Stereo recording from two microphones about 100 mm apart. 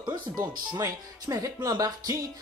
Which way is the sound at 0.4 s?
30° right (ahead or behind).